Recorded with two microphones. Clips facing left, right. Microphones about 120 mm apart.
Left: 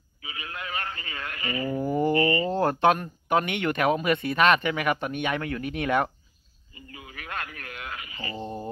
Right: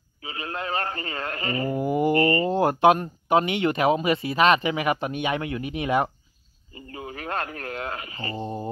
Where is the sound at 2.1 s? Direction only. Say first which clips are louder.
Right 3 dB; 40° right (ahead or behind).